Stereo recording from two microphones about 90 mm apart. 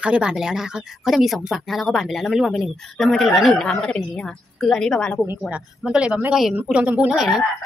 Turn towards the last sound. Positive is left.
turn(degrees=-5)  # may be behind; listen again after turning